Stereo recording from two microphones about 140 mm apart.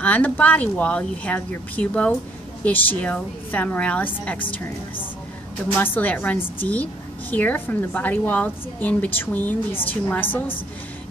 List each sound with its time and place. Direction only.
0.0 s a woman's voice: 10° left (ahead or behind)
5.8 s a woman's voice: 15° left (ahead or behind)